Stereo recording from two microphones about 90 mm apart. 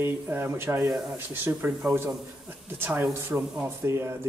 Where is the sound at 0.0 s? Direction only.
25° right (ahead or behind).